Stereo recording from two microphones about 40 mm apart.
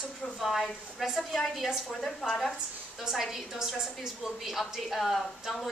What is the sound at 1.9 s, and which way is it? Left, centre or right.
Speech, centre.